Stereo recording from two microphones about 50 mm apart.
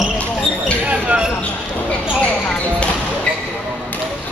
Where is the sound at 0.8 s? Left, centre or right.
Right.